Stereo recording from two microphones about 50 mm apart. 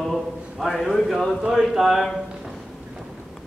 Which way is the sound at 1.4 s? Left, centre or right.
Centre.